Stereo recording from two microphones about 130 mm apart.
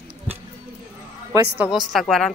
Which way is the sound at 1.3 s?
25° right (ahead or behind).